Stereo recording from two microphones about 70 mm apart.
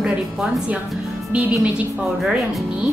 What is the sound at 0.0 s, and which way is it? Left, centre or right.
Speech, centre.